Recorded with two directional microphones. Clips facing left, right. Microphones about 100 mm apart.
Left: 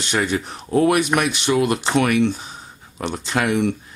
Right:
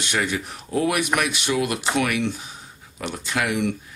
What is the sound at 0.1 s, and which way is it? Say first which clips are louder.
Speech: left 4 dB; 30° left (ahead or behind).